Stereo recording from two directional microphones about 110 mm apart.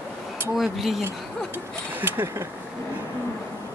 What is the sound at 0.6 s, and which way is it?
Speech, centre (ahead or behind).